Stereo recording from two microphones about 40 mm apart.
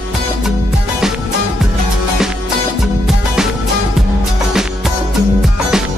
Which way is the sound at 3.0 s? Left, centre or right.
Centre.